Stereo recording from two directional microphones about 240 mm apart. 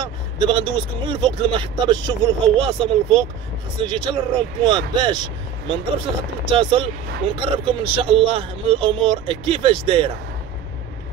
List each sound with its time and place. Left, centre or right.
0.0 s speech: centre